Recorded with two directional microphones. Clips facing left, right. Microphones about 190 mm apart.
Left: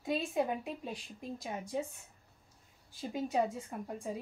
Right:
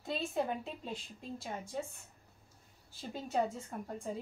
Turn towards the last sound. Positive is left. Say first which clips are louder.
# left 1 dB
turn(degrees=10)  # may be behind; listen again after turning